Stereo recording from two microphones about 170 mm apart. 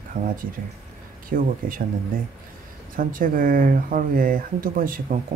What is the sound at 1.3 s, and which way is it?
Speech, 55° right (ahead or behind).